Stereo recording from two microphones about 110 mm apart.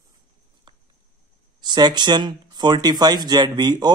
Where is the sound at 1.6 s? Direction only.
40° right (ahead or behind).